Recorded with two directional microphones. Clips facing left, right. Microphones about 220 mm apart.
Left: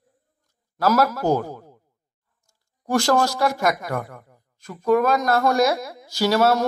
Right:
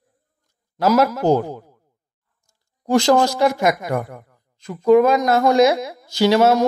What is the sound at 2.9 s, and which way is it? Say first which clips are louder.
A woman's voice: right 4 dB; 20° right (ahead or behind).